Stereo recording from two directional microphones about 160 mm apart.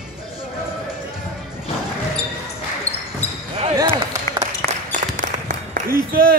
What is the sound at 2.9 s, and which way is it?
Basketball bounce, 10° left (ahead or behind).